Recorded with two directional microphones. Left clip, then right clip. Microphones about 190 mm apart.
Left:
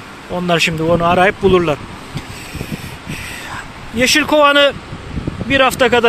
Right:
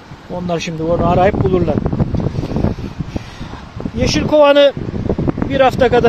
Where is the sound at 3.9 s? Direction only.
5° right (ahead or behind).